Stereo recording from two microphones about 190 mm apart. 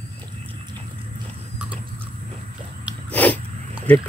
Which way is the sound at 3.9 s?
5° left (ahead or behind).